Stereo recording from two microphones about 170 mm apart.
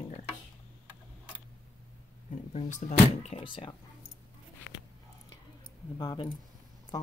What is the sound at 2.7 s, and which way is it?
Speech, 45° left (ahead or behind).